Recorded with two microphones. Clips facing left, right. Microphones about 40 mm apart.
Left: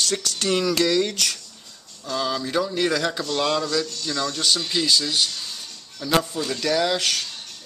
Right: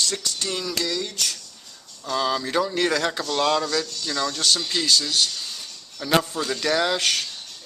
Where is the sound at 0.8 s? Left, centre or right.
Left.